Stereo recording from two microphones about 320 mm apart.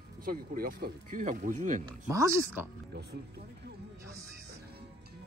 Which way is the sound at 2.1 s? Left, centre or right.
Centre.